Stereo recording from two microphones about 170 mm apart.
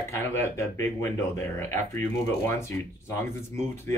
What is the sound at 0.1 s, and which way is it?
Speech, 15° left (ahead or behind).